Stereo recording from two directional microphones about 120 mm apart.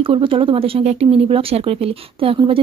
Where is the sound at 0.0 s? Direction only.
45° right (ahead or behind).